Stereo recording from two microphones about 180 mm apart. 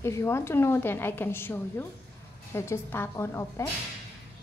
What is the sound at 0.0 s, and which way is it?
Speech, 15° left (ahead or behind).